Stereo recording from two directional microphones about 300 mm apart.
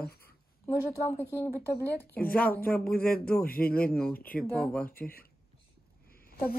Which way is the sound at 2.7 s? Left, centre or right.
Left.